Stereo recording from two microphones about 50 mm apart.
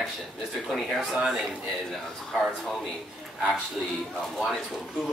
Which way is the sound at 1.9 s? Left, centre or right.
Centre.